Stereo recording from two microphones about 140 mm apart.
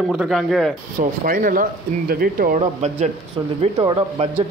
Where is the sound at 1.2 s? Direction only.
85° right.